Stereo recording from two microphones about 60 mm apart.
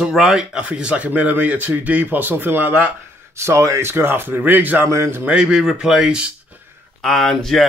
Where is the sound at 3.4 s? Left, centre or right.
Right.